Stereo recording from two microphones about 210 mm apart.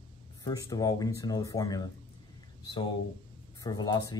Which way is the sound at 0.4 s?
20° left (ahead or behind).